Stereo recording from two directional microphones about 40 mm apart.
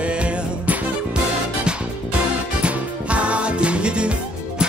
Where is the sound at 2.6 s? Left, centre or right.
Right.